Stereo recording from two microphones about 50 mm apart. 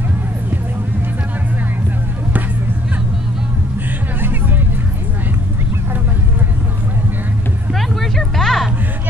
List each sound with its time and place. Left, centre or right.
4.2 s vehicle: right
7.7 s vehicle: centre